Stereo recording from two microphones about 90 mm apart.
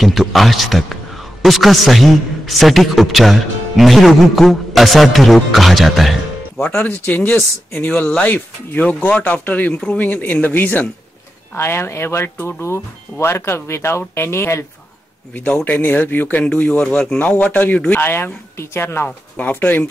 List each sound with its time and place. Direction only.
0.0 s a man's voice: centre (ahead or behind)
6.6 s speech: 15° left (ahead or behind)
19.0 s speech: 15° left (ahead or behind)